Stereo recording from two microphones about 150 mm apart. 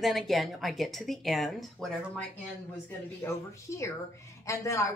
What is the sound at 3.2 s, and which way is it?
Speech, 20° left (ahead or behind).